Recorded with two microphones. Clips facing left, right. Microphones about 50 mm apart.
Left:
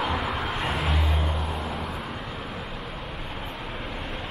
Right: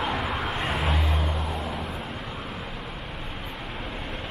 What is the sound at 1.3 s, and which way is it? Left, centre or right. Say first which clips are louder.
Music: even; centre.